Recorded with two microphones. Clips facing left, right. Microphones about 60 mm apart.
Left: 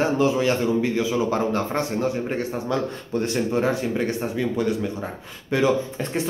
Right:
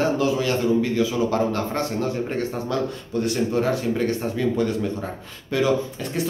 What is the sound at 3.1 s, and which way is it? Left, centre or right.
Speech, left.